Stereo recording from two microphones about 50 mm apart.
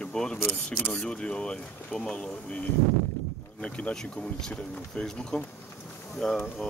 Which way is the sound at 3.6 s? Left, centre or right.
Left.